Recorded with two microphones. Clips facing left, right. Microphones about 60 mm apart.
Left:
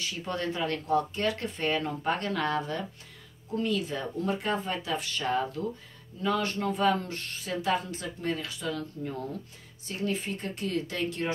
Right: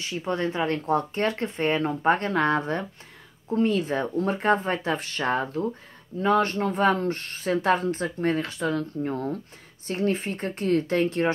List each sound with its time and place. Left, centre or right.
0.0 s speech: right